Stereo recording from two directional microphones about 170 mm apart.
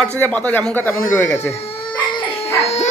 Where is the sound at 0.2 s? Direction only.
10° left (ahead or behind).